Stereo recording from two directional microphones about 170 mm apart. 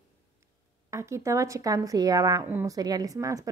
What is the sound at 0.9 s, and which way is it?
A woman's voice, 15° right (ahead or behind).